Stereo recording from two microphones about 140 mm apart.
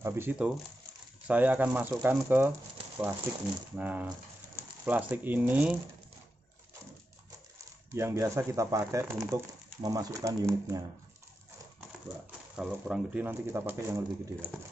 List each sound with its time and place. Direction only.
0.0 s speech: 15° right (ahead or behind)
7.9 s speech: 20° right (ahead or behind)
12.5 s speech: 5° right (ahead or behind)